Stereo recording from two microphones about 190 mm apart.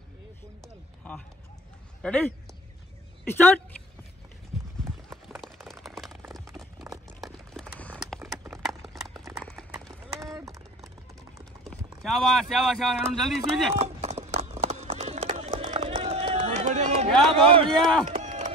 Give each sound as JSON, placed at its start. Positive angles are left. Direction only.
{"t": 1.0, "sound": "run", "side_deg": 5}
{"t": 2.0, "sound": "speech", "side_deg": 5}
{"t": 5.1, "sound": "a sound", "side_deg": 0}
{"t": 7.2, "sound": "a sound", "side_deg": 0}
{"t": 9.4, "sound": "clip-clop", "side_deg": 5}
{"t": 11.6, "sound": "speech", "side_deg": 0}
{"t": 13.7, "sound": "run", "side_deg": -35}
{"t": 17.3, "sound": "a man's voice", "side_deg": -30}
{"t": 18.1, "sound": "run", "side_deg": -40}